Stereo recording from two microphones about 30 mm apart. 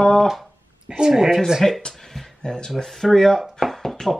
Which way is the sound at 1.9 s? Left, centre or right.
Centre.